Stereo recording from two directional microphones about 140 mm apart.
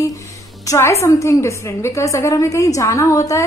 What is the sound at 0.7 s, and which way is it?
A woman's voice, 20° left (ahead or behind).